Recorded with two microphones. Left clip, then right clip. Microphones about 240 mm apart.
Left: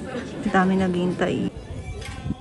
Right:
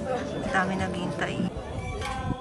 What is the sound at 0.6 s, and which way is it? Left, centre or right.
Speech, centre.